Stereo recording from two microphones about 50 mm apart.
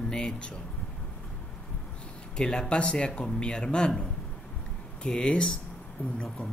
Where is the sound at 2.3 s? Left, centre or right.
Centre.